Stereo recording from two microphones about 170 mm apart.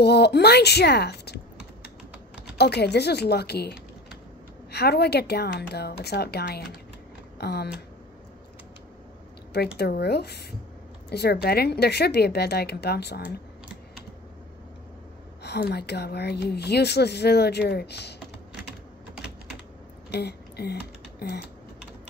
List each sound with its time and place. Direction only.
0.0 s a woman's voice: 75° left (ahead or behind)
2.5 s a woman's voice: 75° left (ahead or behind)
9.8 s a woman's voice: 70° left (ahead or behind)
15.4 s a woman's voice: 75° left (ahead or behind)
20.1 s a sound: 70° left (ahead or behind)
21.2 s typing: 70° left (ahead or behind)